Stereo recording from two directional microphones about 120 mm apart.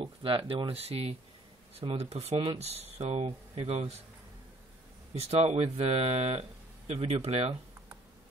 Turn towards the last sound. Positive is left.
turn(degrees=-55)  # may be behind; listen again after turning